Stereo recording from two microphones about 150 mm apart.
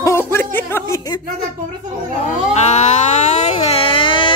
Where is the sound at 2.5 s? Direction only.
50° left (ahead or behind); by 4.3 s 35° left (ahead or behind).